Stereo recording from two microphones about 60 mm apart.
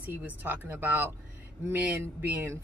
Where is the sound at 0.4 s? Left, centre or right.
Right.